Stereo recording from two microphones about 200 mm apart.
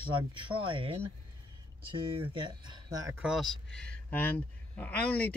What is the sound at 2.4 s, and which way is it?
Speech, 20° right (ahead or behind).